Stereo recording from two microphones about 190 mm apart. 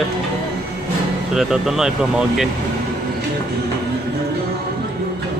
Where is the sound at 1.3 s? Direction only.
Centre (ahead or behind).